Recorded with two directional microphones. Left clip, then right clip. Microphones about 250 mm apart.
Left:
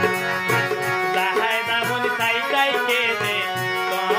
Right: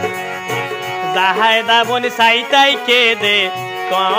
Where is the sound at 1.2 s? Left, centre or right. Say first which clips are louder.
Right 8 dB; right.